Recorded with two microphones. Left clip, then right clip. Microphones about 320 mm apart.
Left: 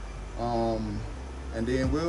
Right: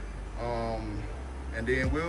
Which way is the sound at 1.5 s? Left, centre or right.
Centre.